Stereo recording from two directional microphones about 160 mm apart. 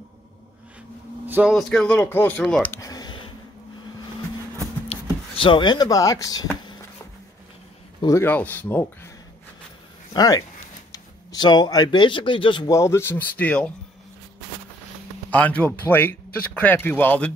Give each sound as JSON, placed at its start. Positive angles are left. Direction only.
{"t": 1.2, "sound": "a sound", "side_deg": -10}
{"t": 1.5, "sound": "speech", "side_deg": 5}
{"t": 2.7, "sound": "a sound", "side_deg": 20}
{"t": 5.3, "sound": "speech", "side_deg": 30}
{"t": 8.0, "sound": "speech", "side_deg": 15}
{"t": 10.1, "sound": "speech", "side_deg": 25}
{"t": 12.7, "sound": "speech", "side_deg": 15}
{"t": 15.3, "sound": "speech", "side_deg": 10}